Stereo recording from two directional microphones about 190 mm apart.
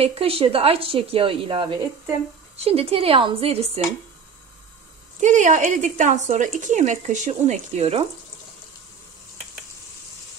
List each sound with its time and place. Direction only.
0.0 s a woman's voice: 30° right (ahead or behind)
5.2 s speech: 40° right (ahead or behind)